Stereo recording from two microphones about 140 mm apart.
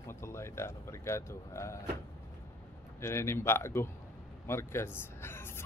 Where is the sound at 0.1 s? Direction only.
20° left (ahead or behind).